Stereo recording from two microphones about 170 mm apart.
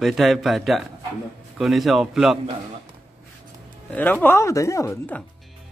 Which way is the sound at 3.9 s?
10° left (ahead or behind).